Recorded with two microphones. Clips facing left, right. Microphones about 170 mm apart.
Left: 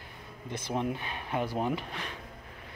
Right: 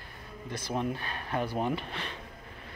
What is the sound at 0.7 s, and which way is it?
Speech, 15° left (ahead or behind).